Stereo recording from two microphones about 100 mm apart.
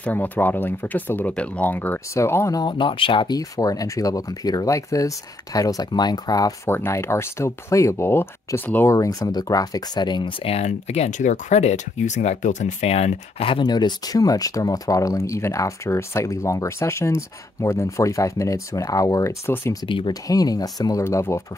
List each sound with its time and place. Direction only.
0.0 s speech: 20° left (ahead or behind)
2.5 s speech: 50° left (ahead or behind)
3.3 s speech: 35° left (ahead or behind)
6.7 s speech: 25° left (ahead or behind)
8.9 s speech: 35° left (ahead or behind)
10.4 s speech: 90° left
12.8 s speech: 90° left; by 13.7 s 70° left (ahead or behind)
13.7 s speech: 45° left (ahead or behind)
21.0 s speech: 30° left (ahead or behind)